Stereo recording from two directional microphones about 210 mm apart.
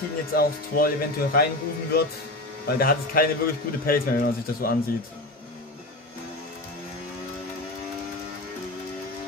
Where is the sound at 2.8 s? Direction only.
45° left (ahead or behind).